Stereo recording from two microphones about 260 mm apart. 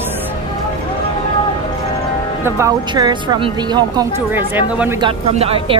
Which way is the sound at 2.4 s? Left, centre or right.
Centre.